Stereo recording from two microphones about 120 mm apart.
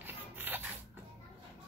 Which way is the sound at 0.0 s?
15° right (ahead or behind).